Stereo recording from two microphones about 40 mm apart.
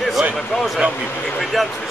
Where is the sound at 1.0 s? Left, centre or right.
Left.